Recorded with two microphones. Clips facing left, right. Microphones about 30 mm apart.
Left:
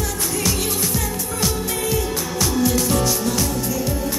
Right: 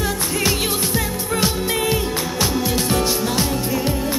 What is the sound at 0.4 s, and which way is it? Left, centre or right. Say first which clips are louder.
Music: right 2 dB; right.